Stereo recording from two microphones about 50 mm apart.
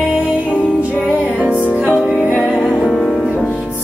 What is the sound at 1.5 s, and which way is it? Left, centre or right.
Music, left.